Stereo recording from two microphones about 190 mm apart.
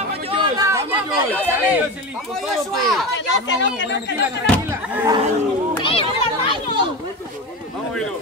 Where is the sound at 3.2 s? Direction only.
75° left (ahead or behind).